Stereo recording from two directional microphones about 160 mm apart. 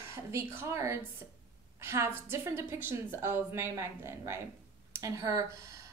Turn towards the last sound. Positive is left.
turn(degrees=-20)  # may be behind; listen again after turning